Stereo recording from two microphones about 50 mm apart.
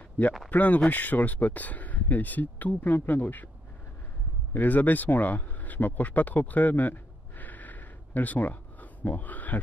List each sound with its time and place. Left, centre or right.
0.5 s speech: left
4.6 s speech: left